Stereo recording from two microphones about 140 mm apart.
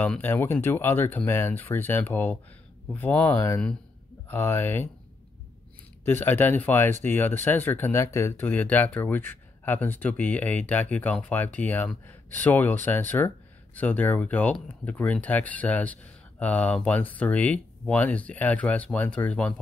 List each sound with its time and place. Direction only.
0.0 s speech: 10° left (ahead or behind)
6.0 s speech: 15° left (ahead or behind)